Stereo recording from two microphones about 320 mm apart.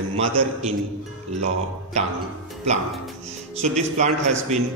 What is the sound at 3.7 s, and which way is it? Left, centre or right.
Speech, right.